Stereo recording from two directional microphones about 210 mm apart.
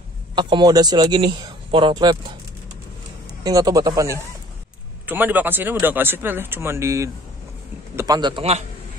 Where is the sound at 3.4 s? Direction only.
15° right (ahead or behind).